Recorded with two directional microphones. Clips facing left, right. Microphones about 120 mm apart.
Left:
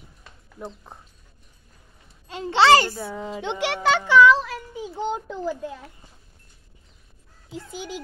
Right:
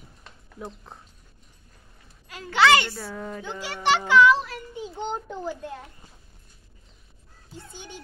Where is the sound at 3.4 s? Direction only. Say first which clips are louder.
Left 8 dB; 80° left.